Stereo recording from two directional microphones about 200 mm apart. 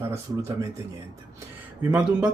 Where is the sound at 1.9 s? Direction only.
5° right (ahead or behind).